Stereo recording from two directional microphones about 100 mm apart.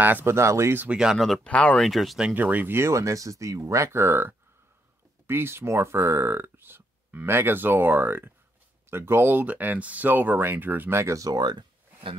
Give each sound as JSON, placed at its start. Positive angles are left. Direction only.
{"t": 0.0, "sound": "speech", "side_deg": -20}
{"t": 0.8, "sound": "speech", "side_deg": -10}
{"t": 1.1, "sound": "speech", "side_deg": 0}
{"t": 2.3, "sound": "speech", "side_deg": -15}